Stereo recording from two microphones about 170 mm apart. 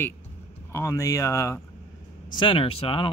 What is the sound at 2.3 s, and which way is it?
Speech, 30° left (ahead or behind).